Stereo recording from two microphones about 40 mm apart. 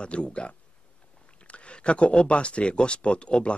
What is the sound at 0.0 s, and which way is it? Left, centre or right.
Speech, left.